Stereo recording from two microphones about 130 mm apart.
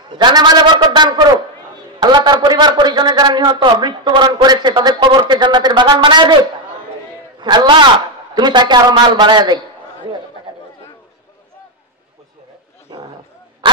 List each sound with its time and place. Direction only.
0.1 s a man's voice: 35° right (ahead or behind)
7.3 s a man's voice: 35° right (ahead or behind)
12.9 s a sound: 35° right (ahead or behind)